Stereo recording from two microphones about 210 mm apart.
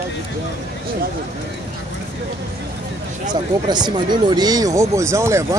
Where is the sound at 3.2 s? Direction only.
20° right (ahead or behind).